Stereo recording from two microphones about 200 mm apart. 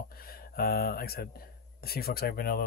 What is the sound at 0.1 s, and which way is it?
Speech, 50° left (ahead or behind).